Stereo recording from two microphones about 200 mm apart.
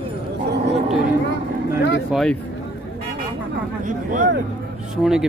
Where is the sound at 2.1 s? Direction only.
5° left (ahead or behind).